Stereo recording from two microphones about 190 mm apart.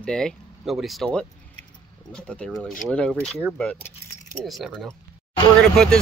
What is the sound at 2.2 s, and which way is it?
Speech, 5° left (ahead or behind).